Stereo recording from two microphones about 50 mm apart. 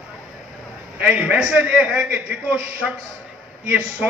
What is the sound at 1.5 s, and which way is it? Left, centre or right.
A man's voice, right.